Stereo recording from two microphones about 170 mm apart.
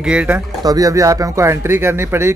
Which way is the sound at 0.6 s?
20° right (ahead or behind).